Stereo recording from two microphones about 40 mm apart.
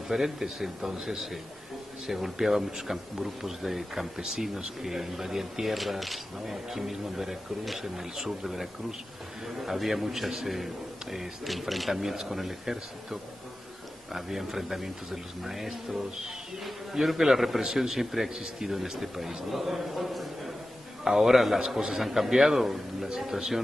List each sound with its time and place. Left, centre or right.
0.1 s speech: centre
23.3 s speech: centre